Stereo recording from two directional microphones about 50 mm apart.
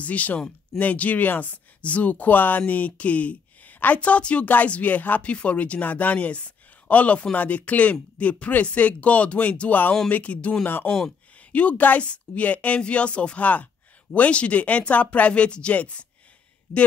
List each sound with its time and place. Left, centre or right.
0.0 s speech: left
10.6 s speech: left